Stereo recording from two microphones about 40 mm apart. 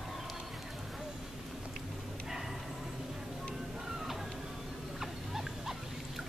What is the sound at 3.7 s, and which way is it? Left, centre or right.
Music, centre.